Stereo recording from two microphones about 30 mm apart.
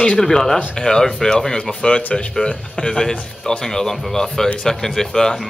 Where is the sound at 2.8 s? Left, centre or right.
Left.